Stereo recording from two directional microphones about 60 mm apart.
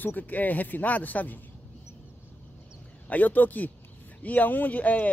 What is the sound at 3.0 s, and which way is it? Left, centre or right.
Speech, left.